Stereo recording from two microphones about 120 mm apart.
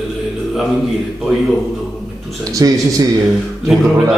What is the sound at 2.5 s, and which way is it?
Speech, 30° right (ahead or behind).